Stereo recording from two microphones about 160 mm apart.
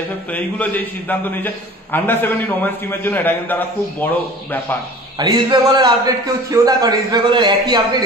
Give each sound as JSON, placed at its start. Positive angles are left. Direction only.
{"t": 0.3, "sound": "a man's voice", "side_deg": 10}
{"t": 5.2, "sound": "a man's voice", "side_deg": -25}